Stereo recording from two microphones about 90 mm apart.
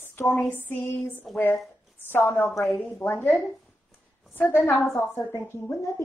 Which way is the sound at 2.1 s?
25° left (ahead or behind).